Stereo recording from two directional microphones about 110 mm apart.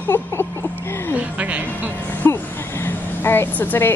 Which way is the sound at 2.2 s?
25° left (ahead or behind).